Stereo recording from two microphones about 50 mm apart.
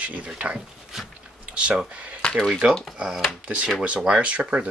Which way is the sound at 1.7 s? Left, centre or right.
Right.